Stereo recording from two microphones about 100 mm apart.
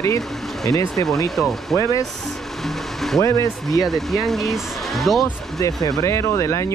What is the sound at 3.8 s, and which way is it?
Speech, centre (ahead or behind).